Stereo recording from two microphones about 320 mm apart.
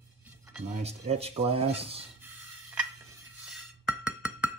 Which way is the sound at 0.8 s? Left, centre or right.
Centre.